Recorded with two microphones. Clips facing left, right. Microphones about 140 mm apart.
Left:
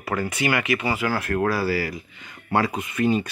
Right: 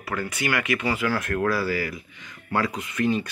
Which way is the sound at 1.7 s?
35° left (ahead or behind).